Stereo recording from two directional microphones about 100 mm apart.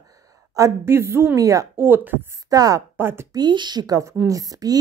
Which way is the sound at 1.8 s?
20° right (ahead or behind).